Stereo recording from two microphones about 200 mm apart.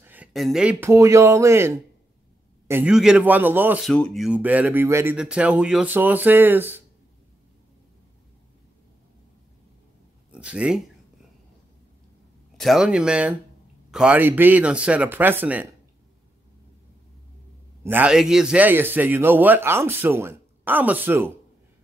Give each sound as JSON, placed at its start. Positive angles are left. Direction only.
{"t": 0.0, "sound": "a man's voice", "side_deg": -10}
{"t": 3.9, "sound": "a man's voice", "side_deg": 5}
{"t": 10.3, "sound": "speech", "side_deg": -5}
{"t": 12.5, "sound": "a man's voice", "side_deg": 0}
{"t": 17.8, "sound": "a man's voice", "side_deg": -5}